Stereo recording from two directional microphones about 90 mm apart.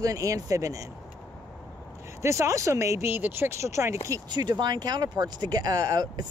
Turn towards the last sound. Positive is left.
turn(degrees=-50)  # may be behind; listen again after turning